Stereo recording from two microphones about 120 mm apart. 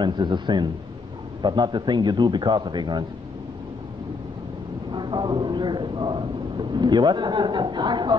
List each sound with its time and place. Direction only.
0.0 s a man's voice: 40° right (ahead or behind)
4.9 s a man's voice: 40° right (ahead or behind)